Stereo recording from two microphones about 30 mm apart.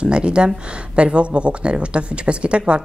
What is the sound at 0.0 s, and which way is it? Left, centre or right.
Speech, right.